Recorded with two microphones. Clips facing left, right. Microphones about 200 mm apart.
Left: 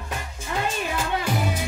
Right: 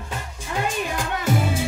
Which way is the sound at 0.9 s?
25° right (ahead or behind).